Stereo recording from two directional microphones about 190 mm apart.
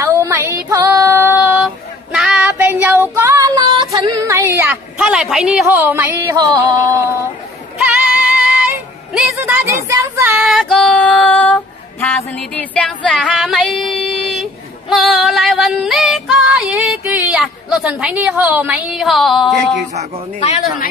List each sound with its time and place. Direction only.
0.0 s female singing: 15° right (ahead or behind)
2.1 s child singing: 5° right (ahead or behind)
7.8 s music: 5° right (ahead or behind)
9.7 s female singing: 15° right (ahead or behind); by 12.2 s 5° left (ahead or behind)
12.4 s a woman's voice: 5° left (ahead or behind)
13.9 s female singing: centre (ahead or behind)
17.8 s a woman's voice: 5° right (ahead or behind)
20.3 s speech: 35° left (ahead or behind)